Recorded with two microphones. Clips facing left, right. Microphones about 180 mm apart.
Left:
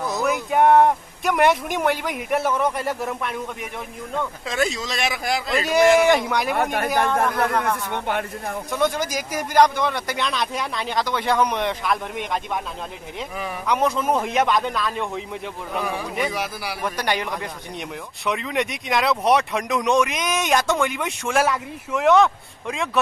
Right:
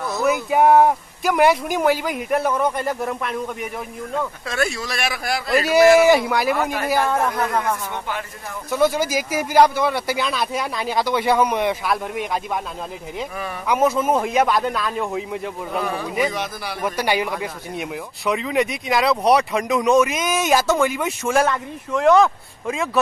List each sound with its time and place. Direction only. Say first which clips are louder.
0.2 s speech: right 2 dB; 5° right (ahead or behind)
4.5 s speech: left 2 dB; 20° left (ahead or behind)
5.5 s speech: right 4 dB; 5° right (ahead or behind)
6.5 s speech: even; 60° left (ahead or behind)
6.9 s speech: right 1 dB; 5° right (ahead or behind)
7.9 s speech: left 3 dB; 60° left (ahead or behind)
8.6 s speech: right 5 dB; 5° right (ahead or behind)
13.7 s speech: right 3 dB; 5° right (ahead or behind)
16.8 s speech: right 4 dB; 10° right (ahead or behind)